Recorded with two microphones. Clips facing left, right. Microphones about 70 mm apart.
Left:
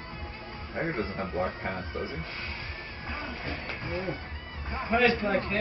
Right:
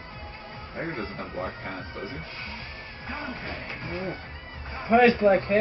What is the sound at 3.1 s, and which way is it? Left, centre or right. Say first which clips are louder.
Speech: right 2 dB; centre.